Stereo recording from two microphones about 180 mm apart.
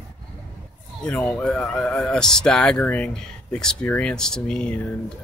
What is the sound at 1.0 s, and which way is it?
Speech, 5° left (ahead or behind).